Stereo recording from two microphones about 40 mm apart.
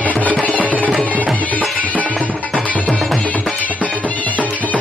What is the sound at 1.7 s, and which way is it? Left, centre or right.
Music, right.